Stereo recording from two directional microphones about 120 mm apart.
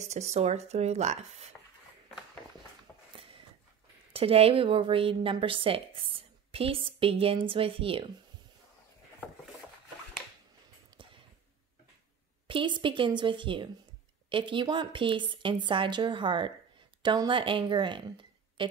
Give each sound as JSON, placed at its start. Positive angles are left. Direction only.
{"t": 0.0, "sound": "speech", "side_deg": -70}
{"t": 4.1, "sound": "a woman's voice", "side_deg": -55}
{"t": 11.0, "sound": "a sound", "side_deg": -40}
{"t": 12.4, "sound": "a woman's voice", "side_deg": -45}